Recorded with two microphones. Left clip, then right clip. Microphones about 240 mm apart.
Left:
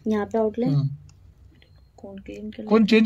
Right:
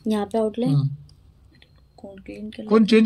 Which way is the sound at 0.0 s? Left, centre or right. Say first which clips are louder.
Even; centre.